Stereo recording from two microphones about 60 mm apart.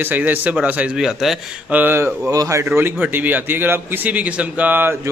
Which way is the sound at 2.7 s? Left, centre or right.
Right.